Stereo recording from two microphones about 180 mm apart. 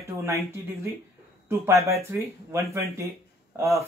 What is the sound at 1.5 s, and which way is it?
Speech, 15° right (ahead or behind).